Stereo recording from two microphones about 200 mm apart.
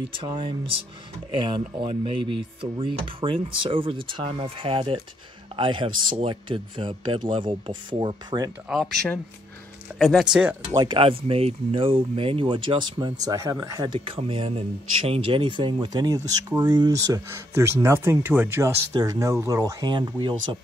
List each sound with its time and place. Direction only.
0.1 s speech: 25° right (ahead or behind)
8.6 s speech: centre (ahead or behind)
10.7 s speech: 20° right (ahead or behind)
13.9 s speech: 25° right (ahead or behind)